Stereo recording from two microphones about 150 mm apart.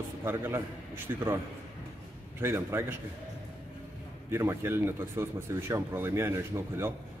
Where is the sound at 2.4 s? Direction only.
15° right (ahead or behind).